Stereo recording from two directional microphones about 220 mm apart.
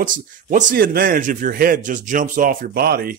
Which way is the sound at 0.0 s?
35° right (ahead or behind).